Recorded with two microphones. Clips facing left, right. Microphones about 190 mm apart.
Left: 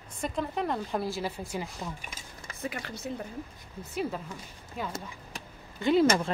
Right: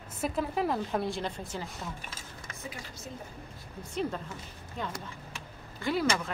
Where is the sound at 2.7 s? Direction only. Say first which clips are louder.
Left 6 dB; 65° left (ahead or behind).